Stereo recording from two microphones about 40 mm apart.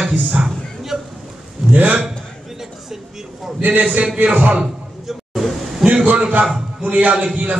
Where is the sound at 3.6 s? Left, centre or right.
Right.